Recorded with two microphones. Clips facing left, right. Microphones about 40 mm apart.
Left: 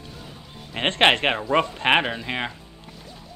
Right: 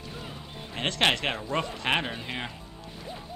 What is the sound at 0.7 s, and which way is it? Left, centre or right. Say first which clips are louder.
Speech: left 7 dB; left.